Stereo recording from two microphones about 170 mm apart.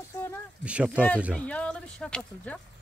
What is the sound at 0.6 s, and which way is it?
Speech, 5° right (ahead or behind).